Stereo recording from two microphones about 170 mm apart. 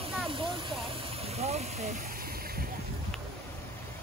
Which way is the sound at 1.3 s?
40° right (ahead or behind).